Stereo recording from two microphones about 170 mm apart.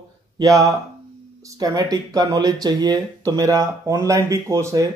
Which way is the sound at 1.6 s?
20° right (ahead or behind).